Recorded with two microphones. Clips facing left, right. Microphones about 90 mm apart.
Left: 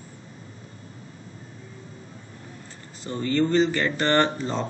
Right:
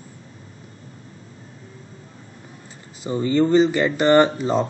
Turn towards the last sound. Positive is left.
turn(degrees=-10)  # may be behind; listen again after turning